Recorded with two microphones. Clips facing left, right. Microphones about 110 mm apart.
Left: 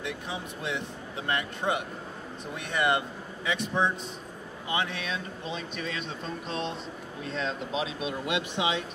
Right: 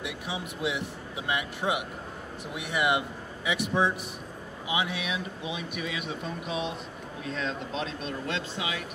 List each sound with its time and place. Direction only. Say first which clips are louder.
0.0 s speech: even; 15° right (ahead or behind); by 8.8 s 25° left (ahead or behind)